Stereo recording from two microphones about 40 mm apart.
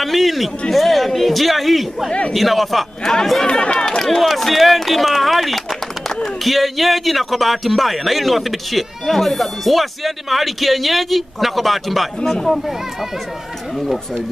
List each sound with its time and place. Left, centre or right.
0.0 s speech: centre
2.0 s a man's voice: left
2.3 s speech: centre
3.0 s speech: centre
3.4 s speech: left
4.0 s speech: centre
12.2 s speech: centre